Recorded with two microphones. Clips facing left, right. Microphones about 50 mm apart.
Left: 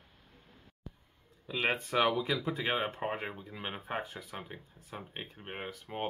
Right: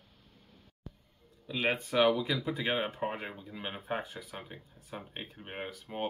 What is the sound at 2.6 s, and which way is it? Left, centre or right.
Speech, centre.